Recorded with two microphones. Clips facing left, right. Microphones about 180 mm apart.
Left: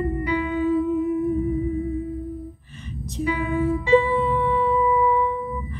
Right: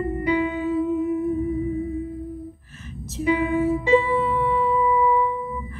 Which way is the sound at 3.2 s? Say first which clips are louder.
Right 4 dB; 20° right (ahead or behind).